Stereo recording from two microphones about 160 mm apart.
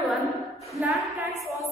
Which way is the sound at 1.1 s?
20° right (ahead or behind).